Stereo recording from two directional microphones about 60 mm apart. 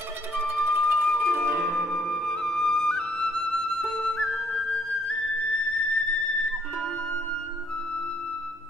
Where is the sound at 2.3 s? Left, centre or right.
Centre.